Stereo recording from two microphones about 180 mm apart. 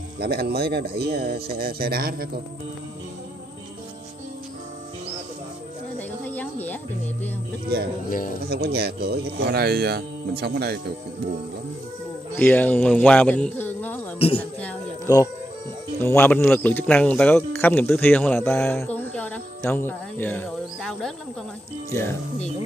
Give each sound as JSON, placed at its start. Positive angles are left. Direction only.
{"t": 0.2, "sound": "speech", "side_deg": -60}
{"t": 5.9, "sound": "snake", "side_deg": 10}
{"t": 8.5, "sound": "speech", "side_deg": -65}
{"t": 12.4, "sound": "speech", "side_deg": 10}
{"t": 14.1, "sound": "speech", "side_deg": 30}
{"t": 16.0, "sound": "speech", "side_deg": 10}